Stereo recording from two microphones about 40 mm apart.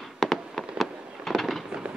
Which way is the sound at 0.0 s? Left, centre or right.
Centre.